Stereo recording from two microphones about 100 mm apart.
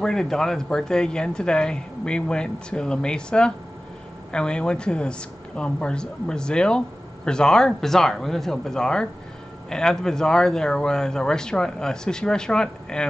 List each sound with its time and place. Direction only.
0.0 s speech: 5° left (ahead or behind)